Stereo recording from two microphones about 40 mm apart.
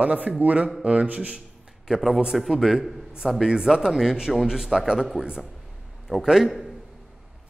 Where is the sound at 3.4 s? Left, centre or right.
Centre.